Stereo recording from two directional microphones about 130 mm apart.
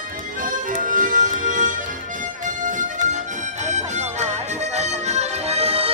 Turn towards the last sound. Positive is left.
turn(degrees=-50)  # may be behind; listen again after turning